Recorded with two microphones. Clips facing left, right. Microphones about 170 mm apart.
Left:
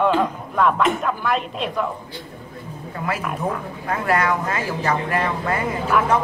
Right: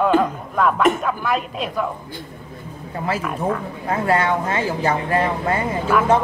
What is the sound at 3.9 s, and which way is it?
Speech, 30° right (ahead or behind).